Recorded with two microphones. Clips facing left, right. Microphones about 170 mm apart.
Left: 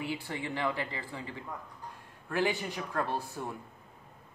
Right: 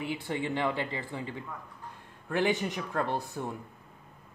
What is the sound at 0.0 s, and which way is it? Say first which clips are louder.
Speech: right 3 dB; 20° right (ahead or behind).